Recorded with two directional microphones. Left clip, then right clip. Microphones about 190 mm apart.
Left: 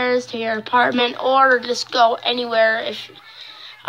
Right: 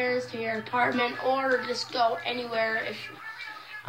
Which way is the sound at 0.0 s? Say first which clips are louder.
Left 8 dB; 50° left (ahead or behind).